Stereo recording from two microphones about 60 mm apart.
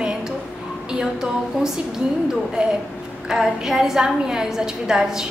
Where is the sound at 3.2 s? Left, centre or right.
Centre.